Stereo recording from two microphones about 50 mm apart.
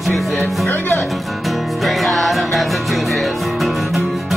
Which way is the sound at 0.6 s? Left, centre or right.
Left.